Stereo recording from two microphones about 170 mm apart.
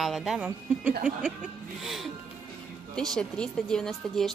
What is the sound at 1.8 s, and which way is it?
Speech, centre (ahead or behind).